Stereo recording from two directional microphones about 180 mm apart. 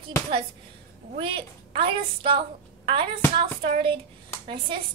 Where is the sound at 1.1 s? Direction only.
30° right (ahead or behind).